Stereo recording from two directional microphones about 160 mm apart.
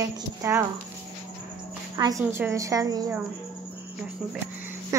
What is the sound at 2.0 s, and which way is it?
A woman's voice, 20° right (ahead or behind).